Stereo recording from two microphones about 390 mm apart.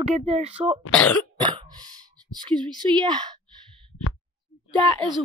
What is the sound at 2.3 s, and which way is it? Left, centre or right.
Speech, centre.